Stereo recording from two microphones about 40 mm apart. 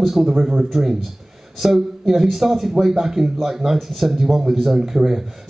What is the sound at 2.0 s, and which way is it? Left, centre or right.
A man's voice, centre.